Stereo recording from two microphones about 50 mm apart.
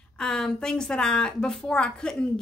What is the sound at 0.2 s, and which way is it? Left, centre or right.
A woman's voice, centre.